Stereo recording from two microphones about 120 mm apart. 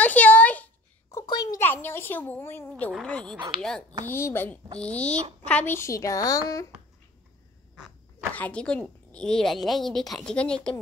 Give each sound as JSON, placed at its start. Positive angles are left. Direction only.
{"t": 0.0, "sound": "a sound", "side_deg": 10}
{"t": 1.2, "sound": "a sound", "side_deg": 35}
{"t": 1.6, "sound": "speech", "side_deg": 15}
{"t": 2.9, "sound": "speech", "side_deg": 5}
{"t": 4.0, "sound": "a woman's voice", "side_deg": 20}
{"t": 8.3, "sound": "speech", "side_deg": 10}